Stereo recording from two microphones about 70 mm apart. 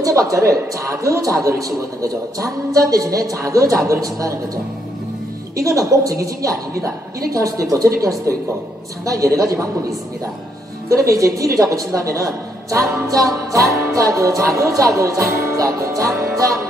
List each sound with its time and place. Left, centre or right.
0.0 s a man's voice: right
5.6 s a woman's voice: right